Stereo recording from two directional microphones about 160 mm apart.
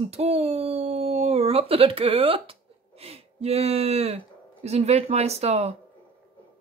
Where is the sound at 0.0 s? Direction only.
40° right (ahead or behind).